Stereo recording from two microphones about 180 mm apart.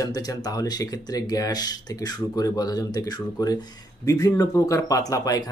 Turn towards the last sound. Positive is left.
turn(degrees=20)  # may be behind; listen again after turning